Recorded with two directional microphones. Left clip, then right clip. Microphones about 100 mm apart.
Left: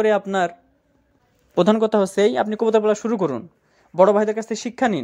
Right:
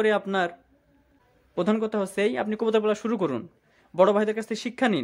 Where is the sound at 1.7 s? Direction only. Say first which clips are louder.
Left 9 dB; 60° left (ahead or behind).